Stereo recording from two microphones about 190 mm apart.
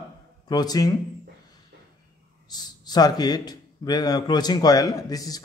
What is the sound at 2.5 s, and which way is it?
A man's voice, 20° left (ahead or behind).